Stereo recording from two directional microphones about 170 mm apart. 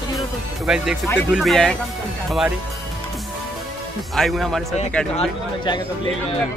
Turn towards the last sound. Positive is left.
turn(degrees=25)  # may be behind; listen again after turning